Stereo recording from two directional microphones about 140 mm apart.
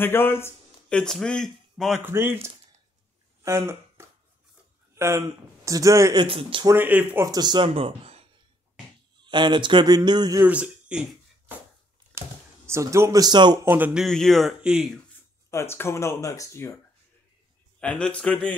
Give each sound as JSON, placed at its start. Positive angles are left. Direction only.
{"t": 0.0, "sound": "a sound", "side_deg": 15}
{"t": 0.9, "sound": "speech", "side_deg": 5}
{"t": 2.0, "sound": "speech", "side_deg": -15}
{"t": 6.1, "sound": "a man's voice", "side_deg": -40}
{"t": 6.6, "sound": "speech", "side_deg": -15}
{"t": 7.2, "sound": "speech", "side_deg": -30}
{"t": 9.2, "sound": "a man's voice", "side_deg": -35}
{"t": 10.4, "sound": "speech", "side_deg": -10}
{"t": 12.2, "sound": "speech", "side_deg": -20}
{"t": 13.7, "sound": "speech", "side_deg": -10}
{"t": 14.0, "sound": "speech", "side_deg": 0}
{"t": 15.5, "sound": "speech", "side_deg": 15}
{"t": 17.7, "sound": "a man's voice", "side_deg": 5}